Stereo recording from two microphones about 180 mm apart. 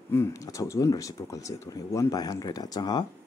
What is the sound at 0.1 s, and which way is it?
Speech, 15° left (ahead or behind).